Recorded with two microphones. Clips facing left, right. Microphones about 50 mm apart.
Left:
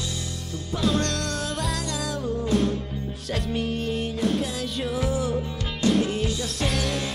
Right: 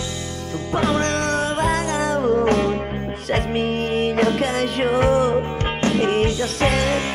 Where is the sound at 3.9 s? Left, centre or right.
Right.